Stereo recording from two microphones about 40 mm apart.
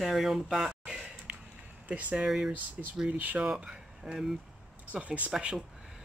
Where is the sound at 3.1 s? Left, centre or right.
Right.